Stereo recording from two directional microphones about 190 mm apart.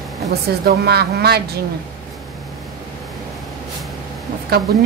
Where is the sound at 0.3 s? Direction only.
55° right (ahead or behind).